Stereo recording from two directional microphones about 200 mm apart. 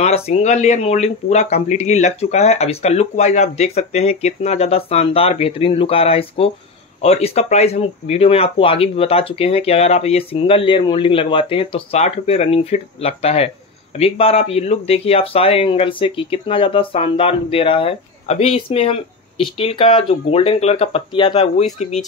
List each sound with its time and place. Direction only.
0.0 s speech: 35° left (ahead or behind)